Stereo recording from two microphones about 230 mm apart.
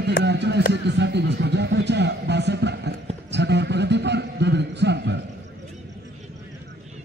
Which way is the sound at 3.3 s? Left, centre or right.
Right.